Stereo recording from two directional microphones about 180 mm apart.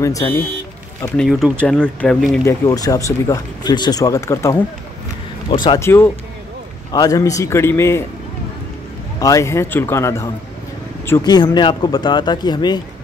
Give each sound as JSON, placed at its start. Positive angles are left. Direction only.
{"t": 0.0, "sound": "speech", "side_deg": 20}
{"t": 1.0, "sound": "speech", "side_deg": 5}
{"t": 2.4, "sound": "speech", "side_deg": 20}
{"t": 5.6, "sound": "a man's voice", "side_deg": 20}
{"t": 9.2, "sound": "a man's voice", "side_deg": 15}